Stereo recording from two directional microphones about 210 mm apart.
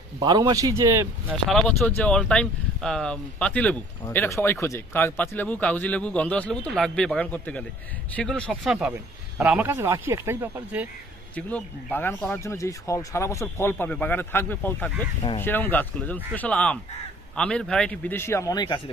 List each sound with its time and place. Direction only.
0.2 s speech: 20° right (ahead or behind)
1.5 s speech: centre (ahead or behind)
11.3 s speech: 10° left (ahead or behind)